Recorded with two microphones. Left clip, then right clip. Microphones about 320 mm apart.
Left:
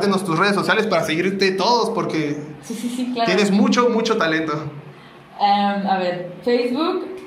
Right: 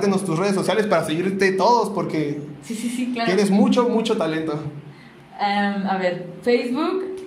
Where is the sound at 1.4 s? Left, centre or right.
Centre.